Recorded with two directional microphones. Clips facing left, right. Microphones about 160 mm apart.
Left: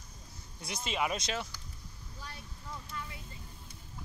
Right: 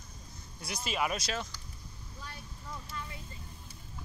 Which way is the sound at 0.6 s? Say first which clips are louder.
Right 1 dB; 25° left (ahead or behind).